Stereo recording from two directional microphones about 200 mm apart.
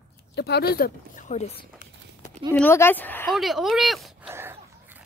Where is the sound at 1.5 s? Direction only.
40° left (ahead or behind).